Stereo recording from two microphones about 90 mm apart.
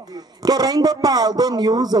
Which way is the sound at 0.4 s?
45° right (ahead or behind).